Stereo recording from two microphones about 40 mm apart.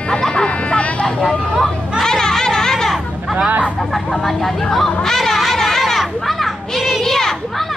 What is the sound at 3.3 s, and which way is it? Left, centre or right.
Speech, right.